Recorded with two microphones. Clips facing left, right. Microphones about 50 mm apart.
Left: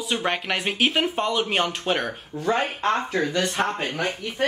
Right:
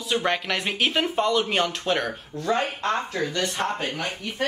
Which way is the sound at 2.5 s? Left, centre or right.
Left.